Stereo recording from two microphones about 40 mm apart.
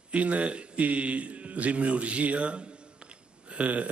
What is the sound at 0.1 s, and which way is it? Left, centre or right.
Speech, right.